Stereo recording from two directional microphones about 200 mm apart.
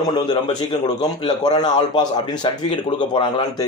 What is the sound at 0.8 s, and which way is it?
Speech, 20° left (ahead or behind).